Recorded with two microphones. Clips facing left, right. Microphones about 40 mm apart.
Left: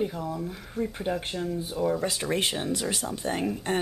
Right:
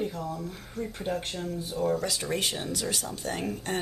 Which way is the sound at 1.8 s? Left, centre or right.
Left.